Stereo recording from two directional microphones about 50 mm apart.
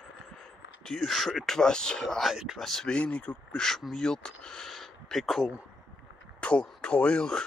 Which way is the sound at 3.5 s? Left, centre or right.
Centre.